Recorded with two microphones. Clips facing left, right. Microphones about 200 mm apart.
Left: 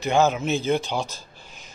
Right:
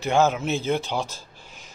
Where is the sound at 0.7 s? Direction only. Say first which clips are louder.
Left 1 dB; 15° left (ahead or behind).